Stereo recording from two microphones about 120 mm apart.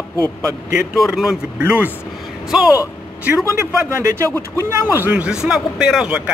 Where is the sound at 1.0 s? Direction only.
Centre (ahead or behind).